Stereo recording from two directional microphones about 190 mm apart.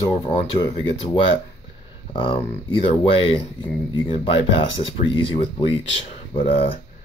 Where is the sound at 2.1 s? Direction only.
25° left (ahead or behind).